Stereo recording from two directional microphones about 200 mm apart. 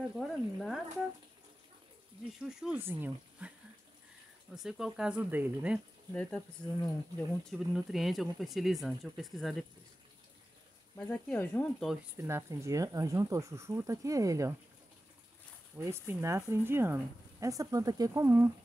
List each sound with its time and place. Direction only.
0.1 s speech: centre (ahead or behind)
2.6 s speech: 10° right (ahead or behind)
4.6 s speech: 5° right (ahead or behind)
6.1 s speech: 5° left (ahead or behind)
11.0 s speech: 10° left (ahead or behind)
12.2 s speech: 15° right (ahead or behind)
15.8 s speech: 15° right (ahead or behind)